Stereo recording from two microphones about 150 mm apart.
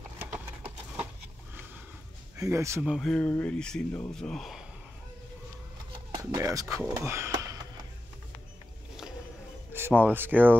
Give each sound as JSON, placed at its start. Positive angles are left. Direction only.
{"t": 2.3, "sound": "speech", "side_deg": -20}
{"t": 2.8, "sound": "speech", "side_deg": 0}
{"t": 6.1, "sound": "speech", "side_deg": -25}
{"t": 9.7, "sound": "speech", "side_deg": -15}